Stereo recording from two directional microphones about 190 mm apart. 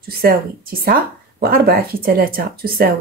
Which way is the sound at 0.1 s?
50° right (ahead or behind).